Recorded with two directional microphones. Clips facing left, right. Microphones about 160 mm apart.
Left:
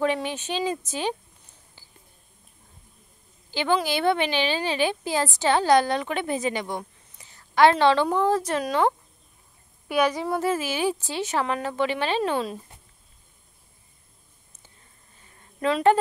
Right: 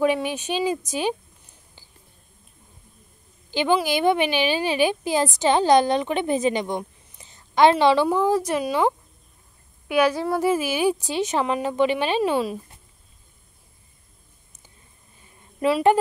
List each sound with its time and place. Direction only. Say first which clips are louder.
0.0 s a woman's voice: right 3 dB; 10° right (ahead or behind)
3.4 s a woman's voice: right 3 dB; 15° right (ahead or behind)
15.6 s a woman's voice: right 2 dB; 10° right (ahead or behind)